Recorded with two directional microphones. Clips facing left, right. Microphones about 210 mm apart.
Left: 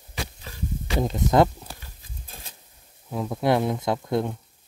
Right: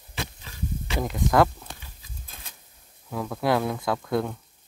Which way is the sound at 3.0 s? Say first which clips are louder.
Left 2 dB; 20° left (ahead or behind).